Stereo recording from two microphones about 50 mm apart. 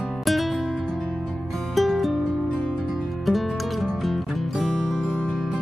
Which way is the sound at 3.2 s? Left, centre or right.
Centre.